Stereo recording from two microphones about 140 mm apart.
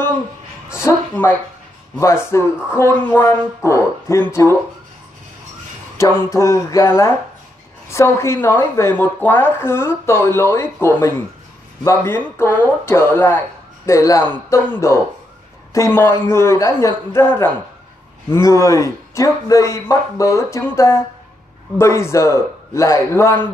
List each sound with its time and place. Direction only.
0.8 s a man's voice: 15° left (ahead or behind)
5.9 s a man's voice: 20° left (ahead or behind)
18.3 s a man's voice: 20° left (ahead or behind)